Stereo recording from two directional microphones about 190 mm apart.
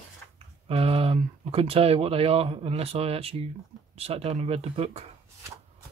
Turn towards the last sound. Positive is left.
turn(degrees=-30)  # may be behind; listen again after turning